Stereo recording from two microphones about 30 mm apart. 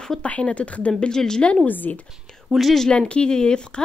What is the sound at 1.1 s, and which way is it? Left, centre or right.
Speech, left.